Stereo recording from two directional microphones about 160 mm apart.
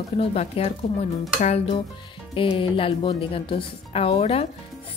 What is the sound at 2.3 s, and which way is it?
A woman's voice, 35° left (ahead or behind).